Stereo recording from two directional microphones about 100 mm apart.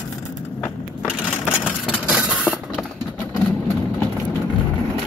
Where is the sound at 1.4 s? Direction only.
20° left (ahead or behind).